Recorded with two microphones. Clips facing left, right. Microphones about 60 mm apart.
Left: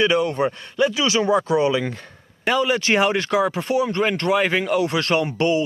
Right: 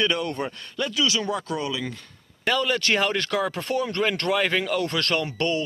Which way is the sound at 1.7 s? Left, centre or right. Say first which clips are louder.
Left 8 dB; left.